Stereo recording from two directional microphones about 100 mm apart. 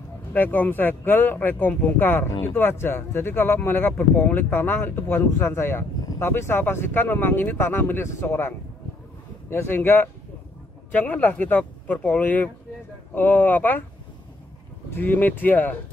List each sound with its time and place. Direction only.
0.3 s speech: 15° left (ahead or behind)
14.9 s speech: 20° left (ahead or behind)